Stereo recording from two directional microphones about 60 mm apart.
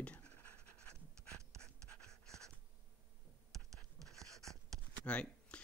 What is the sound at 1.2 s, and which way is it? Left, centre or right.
Pant, centre.